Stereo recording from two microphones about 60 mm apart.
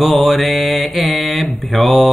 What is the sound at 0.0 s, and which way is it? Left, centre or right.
Mantra, centre.